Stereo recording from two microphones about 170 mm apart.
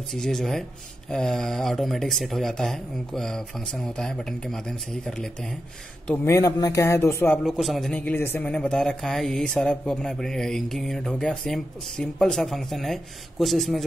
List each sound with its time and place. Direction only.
0.1 s speech: 5° left (ahead or behind)
6.0 s speech: 15° left (ahead or behind)
7.4 s speech: centre (ahead or behind)